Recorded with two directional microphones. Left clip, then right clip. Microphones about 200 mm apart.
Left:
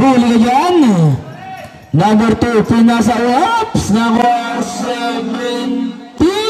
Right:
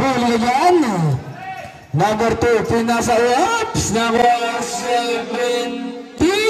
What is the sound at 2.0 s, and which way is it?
A man's voice, 50° right (ahead or behind).